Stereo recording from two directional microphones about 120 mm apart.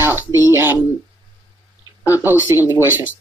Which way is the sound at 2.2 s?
20° right (ahead or behind).